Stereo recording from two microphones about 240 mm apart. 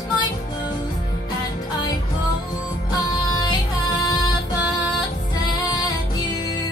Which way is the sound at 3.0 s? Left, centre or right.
Centre.